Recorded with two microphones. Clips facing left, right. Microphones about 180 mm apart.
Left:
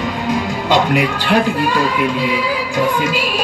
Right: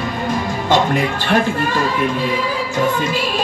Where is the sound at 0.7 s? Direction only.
15° left (ahead or behind).